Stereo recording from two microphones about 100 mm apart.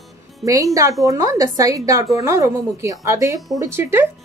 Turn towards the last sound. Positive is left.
turn(degrees=-20)  # may be behind; listen again after turning